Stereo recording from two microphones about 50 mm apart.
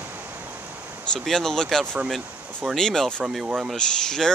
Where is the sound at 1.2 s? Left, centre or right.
Centre.